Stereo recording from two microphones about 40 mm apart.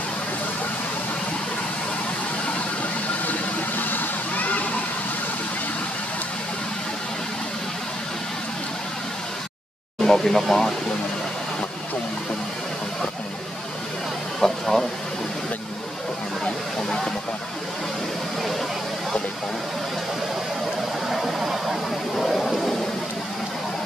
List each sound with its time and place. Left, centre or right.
3.3 s vehicle: left
10.0 s speech: centre
14.4 s speech: centre
21.4 s a sound: centre